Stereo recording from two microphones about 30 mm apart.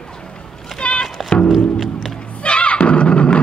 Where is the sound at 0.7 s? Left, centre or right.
Left.